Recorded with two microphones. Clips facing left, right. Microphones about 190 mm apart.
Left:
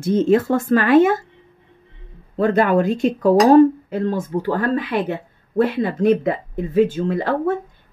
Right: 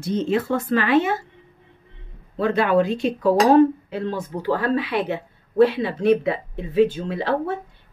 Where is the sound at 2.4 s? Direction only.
45° left (ahead or behind).